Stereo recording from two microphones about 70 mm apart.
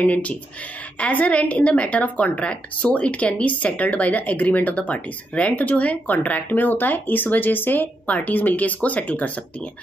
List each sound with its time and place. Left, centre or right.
0.0 s a woman's voice: left